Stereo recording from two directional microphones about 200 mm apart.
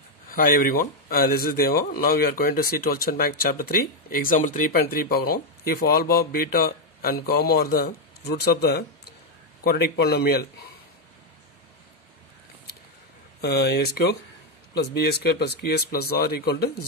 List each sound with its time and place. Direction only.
0.3 s speech: 45° left (ahead or behind)
13.4 s speech: 55° left (ahead or behind)